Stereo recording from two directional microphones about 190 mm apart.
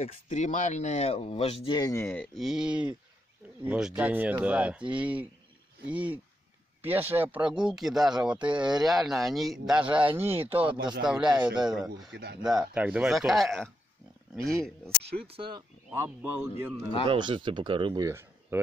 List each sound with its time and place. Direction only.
0.0 s speech: 40° left (ahead or behind); by 2.2 s 15° left (ahead or behind)
2.3 s speech: centre (ahead or behind)
10.7 s speech: 25° right (ahead or behind)
11.0 s speech: 5° right (ahead or behind)
12.1 s speech: 60° right (ahead or behind)
12.4 s speech: 5° right (ahead or behind)
15.2 s speech: 30° right (ahead or behind)
15.9 s speech: 10° right (ahead or behind)
17.1 s speech: 25° right (ahead or behind)